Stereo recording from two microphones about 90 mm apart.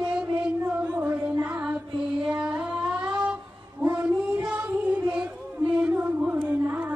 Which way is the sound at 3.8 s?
20° right (ahead or behind).